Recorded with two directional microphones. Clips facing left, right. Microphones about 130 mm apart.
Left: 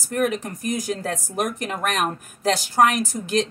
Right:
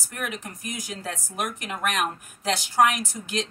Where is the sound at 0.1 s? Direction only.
40° left (ahead or behind).